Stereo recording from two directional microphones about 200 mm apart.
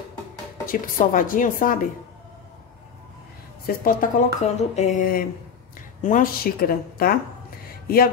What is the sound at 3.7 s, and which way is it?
Speech, 50° left (ahead or behind).